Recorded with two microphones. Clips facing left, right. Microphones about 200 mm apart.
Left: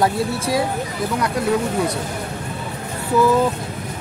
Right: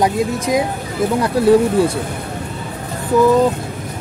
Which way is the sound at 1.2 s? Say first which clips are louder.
Right 8 dB; 30° right (ahead or behind).